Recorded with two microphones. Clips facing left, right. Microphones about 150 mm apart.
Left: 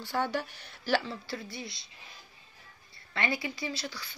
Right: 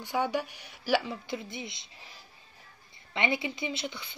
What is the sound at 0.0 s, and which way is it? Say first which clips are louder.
A woman's voice: right 2 dB; 15° right (ahead or behind).